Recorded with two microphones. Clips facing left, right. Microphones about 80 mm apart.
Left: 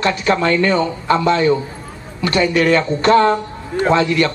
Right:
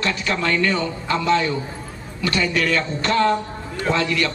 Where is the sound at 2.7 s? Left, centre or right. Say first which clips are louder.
Left 8 dB; left.